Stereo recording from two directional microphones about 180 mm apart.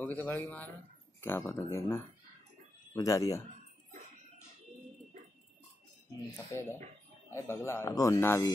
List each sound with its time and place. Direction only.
0.0 s speech: 10° left (ahead or behind)
6.5 s speech: 15° left (ahead or behind)